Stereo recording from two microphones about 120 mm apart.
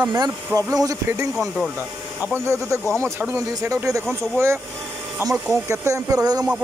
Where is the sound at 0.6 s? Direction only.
30° right (ahead or behind).